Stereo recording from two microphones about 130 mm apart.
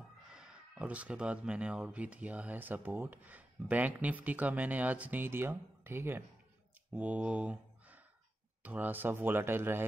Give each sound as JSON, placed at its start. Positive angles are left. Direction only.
{"t": 0.3, "sound": "speech", "side_deg": -5}